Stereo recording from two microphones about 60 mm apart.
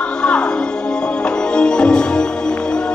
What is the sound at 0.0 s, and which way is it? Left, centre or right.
Music, centre.